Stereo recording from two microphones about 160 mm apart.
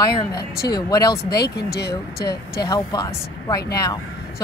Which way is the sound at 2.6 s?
25° left (ahead or behind).